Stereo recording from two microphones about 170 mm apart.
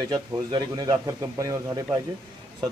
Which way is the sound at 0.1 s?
25° right (ahead or behind).